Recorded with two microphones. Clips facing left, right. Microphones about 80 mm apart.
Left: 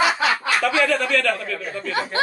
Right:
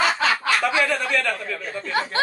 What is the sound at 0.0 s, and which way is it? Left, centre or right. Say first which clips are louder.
Snicker: left 1 dB; centre.